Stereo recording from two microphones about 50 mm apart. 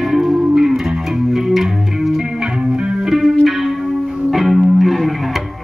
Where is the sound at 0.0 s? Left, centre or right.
Centre.